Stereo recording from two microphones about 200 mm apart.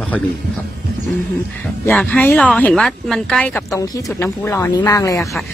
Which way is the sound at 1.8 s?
10° left (ahead or behind).